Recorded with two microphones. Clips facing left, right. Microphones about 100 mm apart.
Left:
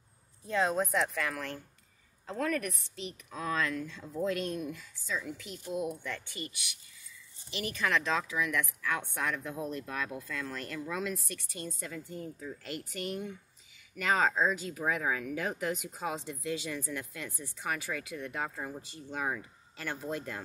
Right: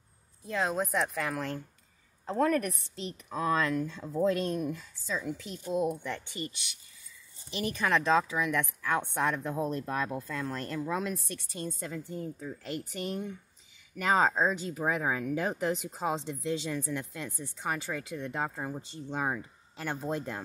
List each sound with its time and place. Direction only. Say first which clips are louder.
0.5 s speech: left 1 dB; 5° right (ahead or behind)
1.1 s a woman's voice: right 2 dB; 15° right (ahead or behind)
2.2 s a woman's voice: right 5 dB; 30° right (ahead or behind)
6.0 s speech: right 3 dB; 20° right (ahead or behind)
7.5 s speech: right 3 dB; 25° right (ahead or behind)
14.3 s speech: right 1 dB; 35° right (ahead or behind)